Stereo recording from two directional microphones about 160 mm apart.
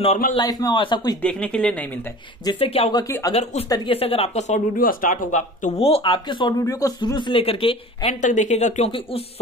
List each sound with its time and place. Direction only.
0.4 s speech: 25° left (ahead or behind)
1.2 s speech: 5° left (ahead or behind)
2.4 s speech: 35° left (ahead or behind)
2.9 s speech: 20° left (ahead or behind)
3.9 s speech: 35° left (ahead or behind); by 5.7 s 55° left (ahead or behind)
5.8 s speech: 35° left (ahead or behind)
8.1 s speech: 50° left (ahead or behind)